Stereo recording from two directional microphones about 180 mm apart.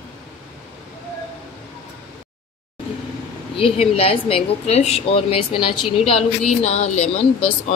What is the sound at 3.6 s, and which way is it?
A woman's voice, 35° left (ahead or behind).